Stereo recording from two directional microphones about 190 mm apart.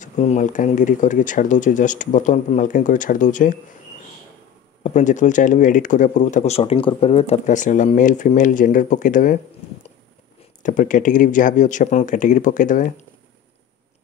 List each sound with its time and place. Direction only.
0.0 s speech: 40° left (ahead or behind)
4.8 s speech: 40° left (ahead or behind)
10.6 s speech: 40° left (ahead or behind)